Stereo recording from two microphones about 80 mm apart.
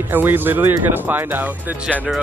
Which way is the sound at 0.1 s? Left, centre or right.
Right.